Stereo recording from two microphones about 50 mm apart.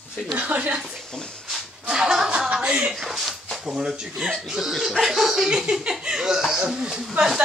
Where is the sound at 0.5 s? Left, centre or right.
Right.